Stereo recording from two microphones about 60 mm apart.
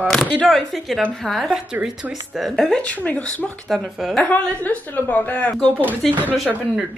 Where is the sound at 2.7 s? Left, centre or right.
Left.